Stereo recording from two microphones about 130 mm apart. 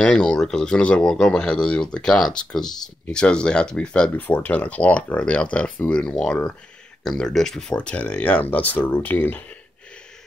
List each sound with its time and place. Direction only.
0.0 s speech: 5° left (ahead or behind)